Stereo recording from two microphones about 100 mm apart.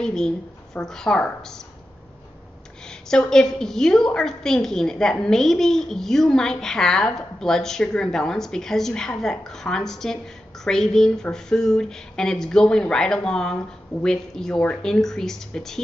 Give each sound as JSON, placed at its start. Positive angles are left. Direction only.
{"t": 0.0, "sound": "a woman's voice", "side_deg": 5}
{"t": 2.9, "sound": "a woman's voice", "side_deg": 5}